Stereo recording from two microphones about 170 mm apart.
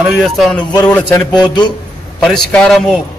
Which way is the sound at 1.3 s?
25° left (ahead or behind).